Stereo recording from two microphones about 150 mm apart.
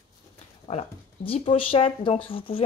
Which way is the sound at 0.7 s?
40° left (ahead or behind).